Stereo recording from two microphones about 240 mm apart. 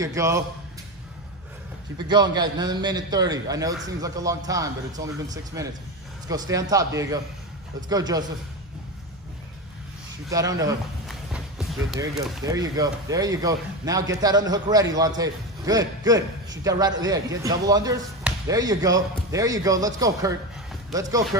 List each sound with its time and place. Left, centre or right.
0.0 s speech: centre
2.0 s speech: centre
10.3 s speech: centre
11.1 s a sound: centre
12.0 s speech: centre